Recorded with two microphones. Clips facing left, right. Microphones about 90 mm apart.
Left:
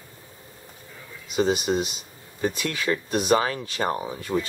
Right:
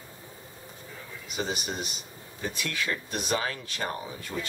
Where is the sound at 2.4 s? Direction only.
50° left (ahead or behind).